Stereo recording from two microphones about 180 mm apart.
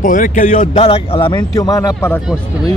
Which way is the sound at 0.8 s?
30° left (ahead or behind).